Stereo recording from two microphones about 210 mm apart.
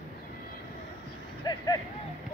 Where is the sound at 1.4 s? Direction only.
20° left (ahead or behind).